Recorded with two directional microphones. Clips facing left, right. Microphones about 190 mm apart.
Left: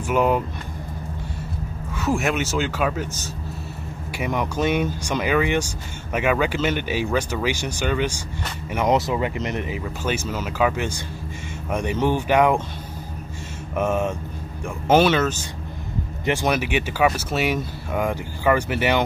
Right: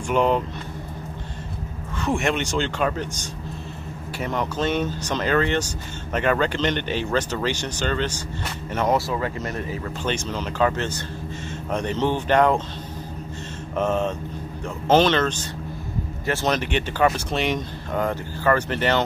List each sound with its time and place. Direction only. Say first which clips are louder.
0.1 s speech: even; 5° left (ahead or behind)
2.0 s speech: left 1 dB; 5° left (ahead or behind); by 9.8 s 20° left (ahead or behind)
10.0 s speech: left 1 dB; 5° left (ahead or behind)
13.7 s speech: even; 10° left (ahead or behind)